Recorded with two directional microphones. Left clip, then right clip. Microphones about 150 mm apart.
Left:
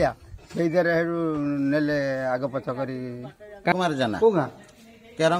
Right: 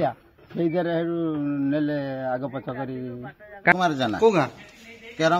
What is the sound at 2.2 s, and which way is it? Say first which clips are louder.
Speech: left 2 dB; 20° left (ahead or behind).